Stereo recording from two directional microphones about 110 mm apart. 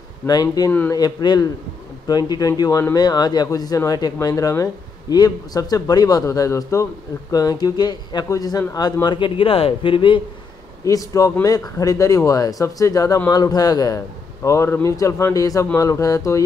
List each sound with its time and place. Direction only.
0.3 s a man's voice: 35° left (ahead or behind)
0.7 s speech: 25° left (ahead or behind)
0.9 s a man's voice: 40° left (ahead or behind)
9.0 s speech: 45° left (ahead or behind)
10.9 s a man's voice: 30° left (ahead or behind)